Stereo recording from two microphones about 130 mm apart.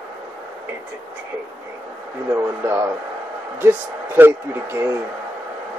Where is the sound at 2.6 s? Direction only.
15° right (ahead or behind).